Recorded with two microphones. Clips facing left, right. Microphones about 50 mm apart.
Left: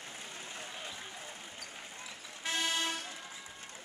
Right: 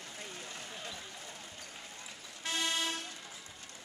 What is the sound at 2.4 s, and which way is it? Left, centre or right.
Vehicle, centre.